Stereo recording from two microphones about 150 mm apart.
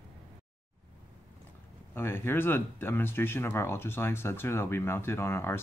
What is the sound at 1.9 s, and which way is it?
Speech, 15° left (ahead or behind).